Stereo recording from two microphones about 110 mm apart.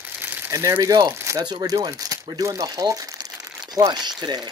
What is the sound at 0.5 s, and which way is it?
Speech, 30° right (ahead or behind).